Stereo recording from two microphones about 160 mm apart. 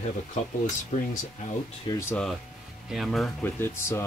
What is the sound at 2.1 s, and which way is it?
Speech, centre (ahead or behind).